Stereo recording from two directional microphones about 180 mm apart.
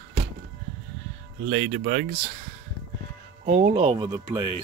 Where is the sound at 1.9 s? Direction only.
50° right (ahead or behind).